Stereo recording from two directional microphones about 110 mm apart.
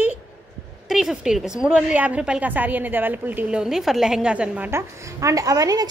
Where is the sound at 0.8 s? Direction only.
5° right (ahead or behind).